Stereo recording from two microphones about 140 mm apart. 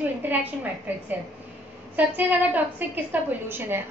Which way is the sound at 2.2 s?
10° right (ahead or behind).